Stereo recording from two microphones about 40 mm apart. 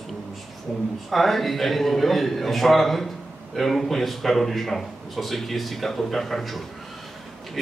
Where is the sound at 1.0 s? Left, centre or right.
Centre.